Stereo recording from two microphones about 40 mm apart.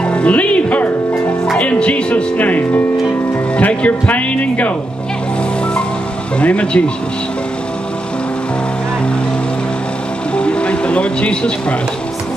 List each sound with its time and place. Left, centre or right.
0.0 s music: left
1.6 s speech: left
2.3 s speech: left
6.3 s speech: left
10.3 s music: left